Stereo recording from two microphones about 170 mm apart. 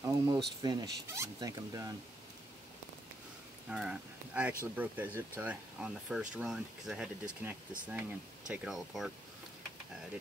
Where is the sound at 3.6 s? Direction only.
5° right (ahead or behind).